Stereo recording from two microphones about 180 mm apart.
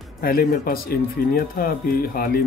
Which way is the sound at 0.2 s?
55° left (ahead or behind).